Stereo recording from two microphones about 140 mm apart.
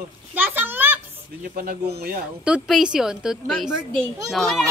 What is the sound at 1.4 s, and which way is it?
Speech, 85° right.